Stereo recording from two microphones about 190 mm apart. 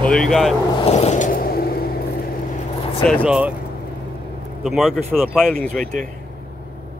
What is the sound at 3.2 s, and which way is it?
Speech, 5° right (ahead or behind).